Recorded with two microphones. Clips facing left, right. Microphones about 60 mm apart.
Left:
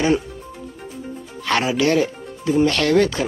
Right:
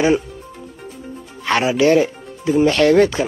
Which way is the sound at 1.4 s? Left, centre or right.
Centre.